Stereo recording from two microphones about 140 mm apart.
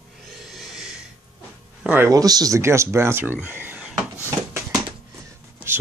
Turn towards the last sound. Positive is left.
turn(degrees=-15)  # may be behind; listen again after turning